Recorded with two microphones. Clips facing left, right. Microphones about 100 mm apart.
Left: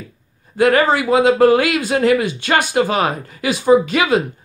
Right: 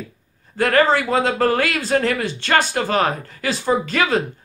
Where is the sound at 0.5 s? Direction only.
10° left (ahead or behind).